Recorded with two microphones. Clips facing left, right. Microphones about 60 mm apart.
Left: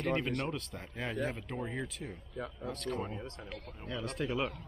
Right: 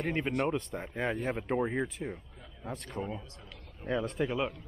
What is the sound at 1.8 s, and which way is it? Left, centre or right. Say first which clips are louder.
Speech: right 6 dB; right.